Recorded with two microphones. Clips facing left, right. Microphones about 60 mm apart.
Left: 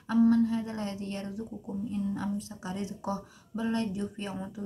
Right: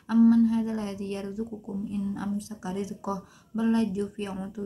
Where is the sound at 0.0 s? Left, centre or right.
Centre.